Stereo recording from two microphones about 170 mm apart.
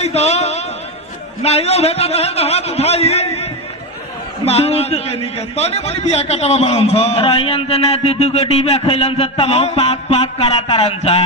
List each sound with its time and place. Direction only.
0.0 s a sound: 40° left (ahead or behind)
1.4 s a man's voice: 40° left (ahead or behind)
4.5 s a man's voice: 35° left (ahead or behind)